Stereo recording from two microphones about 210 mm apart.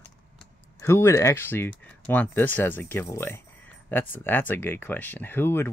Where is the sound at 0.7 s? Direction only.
15° left (ahead or behind).